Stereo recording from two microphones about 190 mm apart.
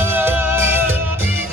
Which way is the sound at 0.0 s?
10° right (ahead or behind).